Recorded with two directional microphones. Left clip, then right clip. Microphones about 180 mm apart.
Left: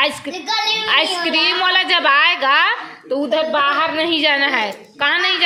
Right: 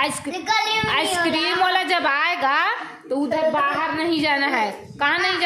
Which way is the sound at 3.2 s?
Centre (ahead or behind).